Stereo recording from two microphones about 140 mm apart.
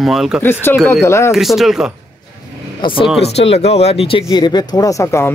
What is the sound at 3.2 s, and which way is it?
Speech, 45° left (ahead or behind).